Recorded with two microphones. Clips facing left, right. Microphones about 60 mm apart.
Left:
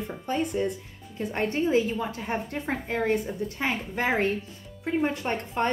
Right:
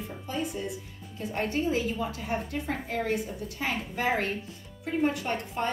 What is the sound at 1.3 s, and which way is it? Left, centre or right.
A woman's voice, left.